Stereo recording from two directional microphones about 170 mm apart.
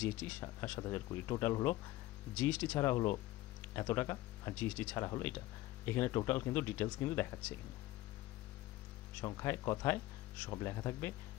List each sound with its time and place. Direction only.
0.0 s speech: 10° left (ahead or behind)
9.2 s speech: 20° left (ahead or behind)